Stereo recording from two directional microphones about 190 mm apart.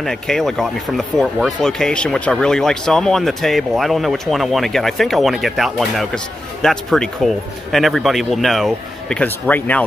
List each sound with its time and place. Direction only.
0.0 s speech: centre (ahead or behind)